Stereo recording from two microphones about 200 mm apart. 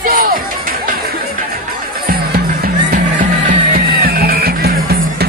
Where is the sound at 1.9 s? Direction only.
50° right (ahead or behind).